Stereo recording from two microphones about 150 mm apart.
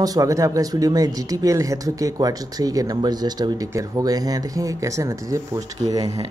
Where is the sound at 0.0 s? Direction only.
25° right (ahead or behind).